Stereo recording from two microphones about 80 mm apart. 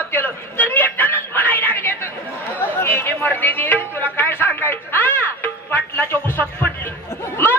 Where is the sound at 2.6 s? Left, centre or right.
Left.